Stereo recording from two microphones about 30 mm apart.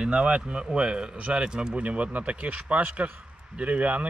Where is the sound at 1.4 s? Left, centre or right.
Right.